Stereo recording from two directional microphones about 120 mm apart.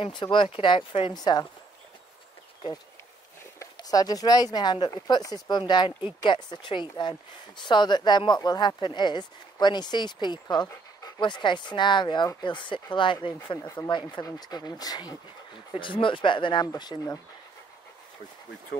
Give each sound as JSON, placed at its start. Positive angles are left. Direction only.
{"t": 0.0, "sound": "speech", "side_deg": 40}
{"t": 3.7, "sound": "speech", "side_deg": 30}